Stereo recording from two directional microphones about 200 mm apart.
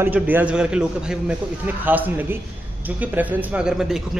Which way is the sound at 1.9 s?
10° right (ahead or behind).